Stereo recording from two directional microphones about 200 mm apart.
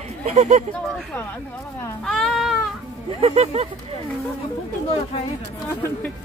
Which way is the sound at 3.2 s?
30° right (ahead or behind).